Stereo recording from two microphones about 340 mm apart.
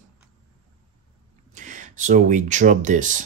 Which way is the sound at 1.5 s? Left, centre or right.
Right.